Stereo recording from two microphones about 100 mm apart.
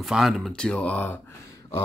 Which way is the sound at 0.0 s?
5° right (ahead or behind).